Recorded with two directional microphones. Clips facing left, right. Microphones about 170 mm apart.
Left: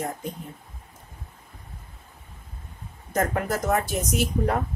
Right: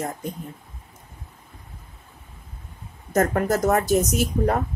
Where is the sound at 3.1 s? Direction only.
45° right (ahead or behind).